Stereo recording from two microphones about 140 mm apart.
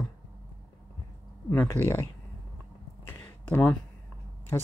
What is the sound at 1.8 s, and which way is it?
Speech, 20° right (ahead or behind).